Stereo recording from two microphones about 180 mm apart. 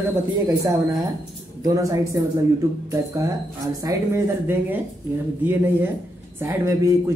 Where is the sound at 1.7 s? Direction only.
20° right (ahead or behind).